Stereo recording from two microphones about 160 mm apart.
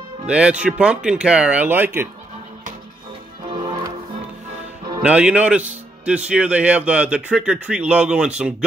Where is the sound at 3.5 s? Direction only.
30° right (ahead or behind).